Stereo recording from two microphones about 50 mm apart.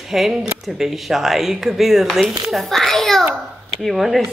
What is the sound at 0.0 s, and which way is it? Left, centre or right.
Speech, centre.